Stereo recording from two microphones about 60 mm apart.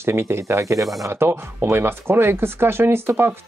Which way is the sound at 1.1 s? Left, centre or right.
Right.